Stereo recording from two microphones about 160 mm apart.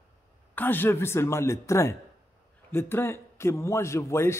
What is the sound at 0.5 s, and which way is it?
Speech, 15° left (ahead or behind).